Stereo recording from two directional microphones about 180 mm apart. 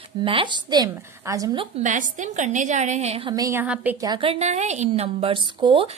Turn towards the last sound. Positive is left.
turn(degrees=-30)  # may be behind; listen again after turning